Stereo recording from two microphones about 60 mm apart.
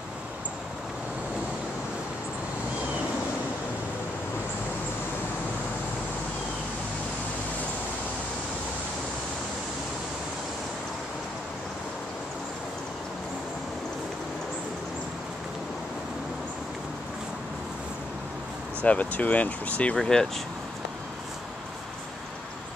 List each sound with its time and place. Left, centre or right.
18.8 s speech: left
20.0 s speech: centre